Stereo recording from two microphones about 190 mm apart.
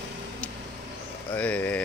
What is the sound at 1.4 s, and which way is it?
Speech, 10° left (ahead or behind).